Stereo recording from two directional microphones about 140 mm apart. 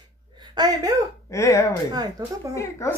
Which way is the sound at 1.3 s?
20° left (ahead or behind).